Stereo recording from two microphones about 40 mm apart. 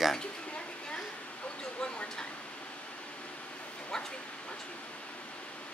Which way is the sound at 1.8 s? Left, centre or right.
Left.